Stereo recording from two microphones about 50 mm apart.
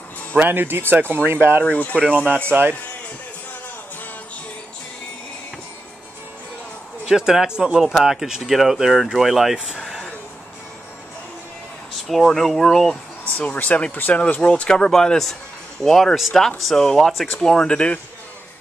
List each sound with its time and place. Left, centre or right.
0.4 s speech: right
1.6 s speech: left
7.1 s speech: centre
9.8 s a sound: centre
12.1 s speech: centre
13.2 s speech: left
14.7 s speech: centre